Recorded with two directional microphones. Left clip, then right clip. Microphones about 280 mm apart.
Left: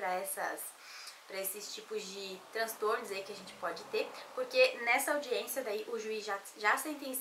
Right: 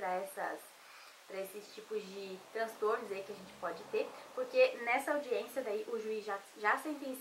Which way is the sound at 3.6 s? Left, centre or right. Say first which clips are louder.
Left 2 dB; centre.